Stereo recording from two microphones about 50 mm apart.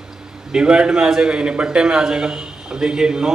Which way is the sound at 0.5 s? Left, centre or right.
Centre.